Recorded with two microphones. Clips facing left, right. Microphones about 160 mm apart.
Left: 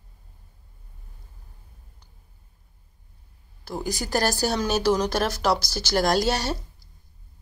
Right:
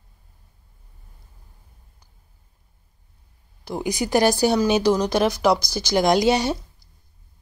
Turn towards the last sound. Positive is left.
turn(degrees=-15)  # may be behind; listen again after turning